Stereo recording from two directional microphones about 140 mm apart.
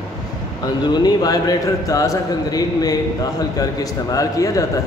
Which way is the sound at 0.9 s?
30° left (ahead or behind).